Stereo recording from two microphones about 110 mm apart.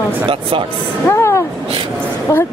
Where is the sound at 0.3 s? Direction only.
50° right (ahead or behind).